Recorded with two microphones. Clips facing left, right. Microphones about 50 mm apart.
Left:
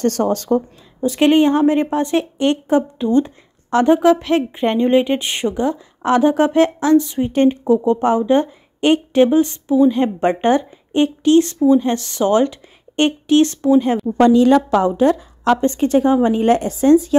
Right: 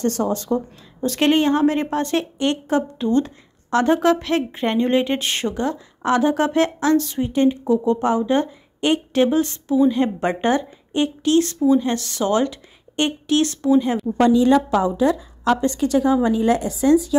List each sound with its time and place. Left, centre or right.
0.0 s a woman's voice: left
1.0 s a woman's voice: centre
7.3 s a woman's voice: left
14.2 s a woman's voice: left
15.6 s a woman's voice: left